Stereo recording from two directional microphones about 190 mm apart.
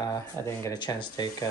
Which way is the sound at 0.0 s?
20° left (ahead or behind).